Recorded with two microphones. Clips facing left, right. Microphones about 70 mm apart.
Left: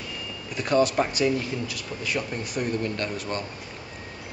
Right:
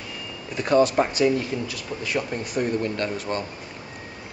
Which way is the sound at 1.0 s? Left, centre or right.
Centre.